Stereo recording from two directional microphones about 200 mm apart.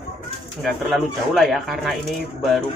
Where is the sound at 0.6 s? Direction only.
Centre (ahead or behind).